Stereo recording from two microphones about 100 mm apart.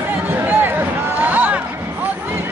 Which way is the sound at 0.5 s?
20° right (ahead or behind).